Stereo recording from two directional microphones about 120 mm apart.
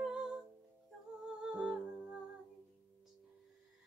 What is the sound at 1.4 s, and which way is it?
Music, 5° right (ahead or behind).